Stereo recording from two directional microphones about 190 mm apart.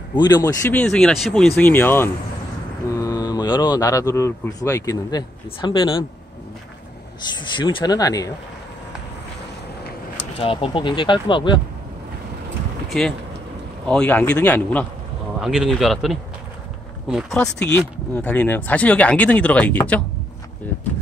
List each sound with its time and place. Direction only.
0.2 s speech: 20° left (ahead or behind)
0.7 s speech: 5° left (ahead or behind); by 6.0 s 25° left (ahead or behind)
7.5 s speech: 25° left (ahead or behind)
10.4 s speech: 30° left (ahead or behind)
12.8 s a sound: 5° left (ahead or behind)
13.8 s speech: 5° left (ahead or behind)
15.3 s speech: 5° right (ahead or behind)